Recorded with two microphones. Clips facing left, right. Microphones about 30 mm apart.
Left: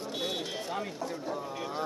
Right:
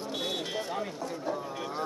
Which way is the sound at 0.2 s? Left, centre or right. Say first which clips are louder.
Right 1 dB; centre.